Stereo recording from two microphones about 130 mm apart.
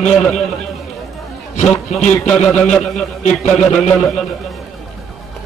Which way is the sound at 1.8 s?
60° left (ahead or behind).